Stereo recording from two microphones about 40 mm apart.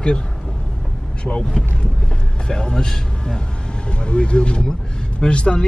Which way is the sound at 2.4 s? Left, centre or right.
Left.